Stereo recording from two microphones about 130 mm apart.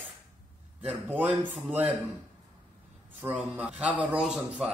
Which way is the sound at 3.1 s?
15° right (ahead or behind).